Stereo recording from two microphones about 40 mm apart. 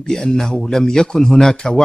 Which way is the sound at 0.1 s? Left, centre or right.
Centre.